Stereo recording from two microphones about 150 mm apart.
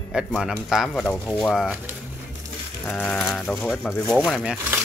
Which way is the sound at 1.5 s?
5° right (ahead or behind).